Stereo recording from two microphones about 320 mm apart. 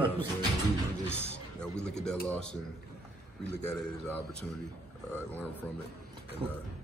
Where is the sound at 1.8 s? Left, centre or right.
Centre.